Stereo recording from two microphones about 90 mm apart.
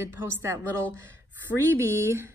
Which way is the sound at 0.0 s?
30° right (ahead or behind).